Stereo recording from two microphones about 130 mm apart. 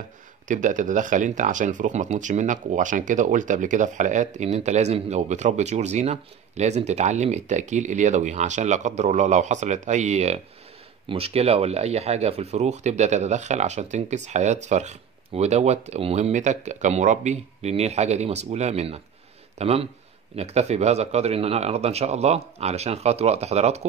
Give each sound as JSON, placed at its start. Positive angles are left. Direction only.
{"t": 0.5, "sound": "speech", "side_deg": -75}
{"t": 11.1, "sound": "speech", "side_deg": -50}